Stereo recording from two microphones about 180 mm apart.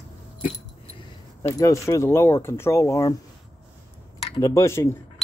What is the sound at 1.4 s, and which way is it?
Speech, 15° left (ahead or behind).